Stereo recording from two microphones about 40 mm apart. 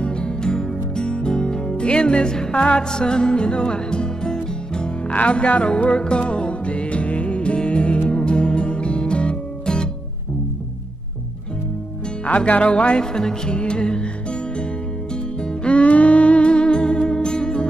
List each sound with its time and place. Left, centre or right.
0.0 s music: left
5.0 s music: left
12.4 s music: left